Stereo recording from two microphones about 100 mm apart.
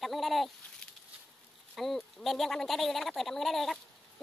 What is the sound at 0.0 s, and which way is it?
Speech, centre (ahead or behind).